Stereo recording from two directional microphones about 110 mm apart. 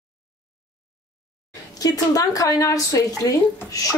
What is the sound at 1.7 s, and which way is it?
A woman's voice, 35° left (ahead or behind).